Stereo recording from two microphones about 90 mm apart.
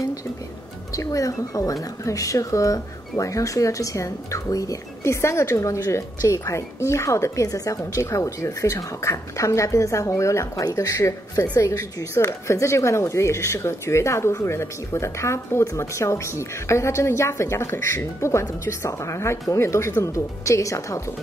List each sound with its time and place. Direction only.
0.9 s speech: 40° left (ahead or behind)